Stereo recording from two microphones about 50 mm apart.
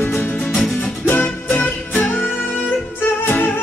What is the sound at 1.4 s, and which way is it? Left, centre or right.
Music, left.